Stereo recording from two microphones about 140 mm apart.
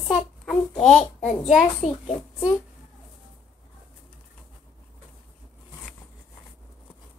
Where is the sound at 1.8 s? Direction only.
55° left (ahead or behind).